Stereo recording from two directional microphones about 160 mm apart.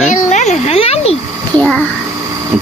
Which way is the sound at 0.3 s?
45° left (ahead or behind).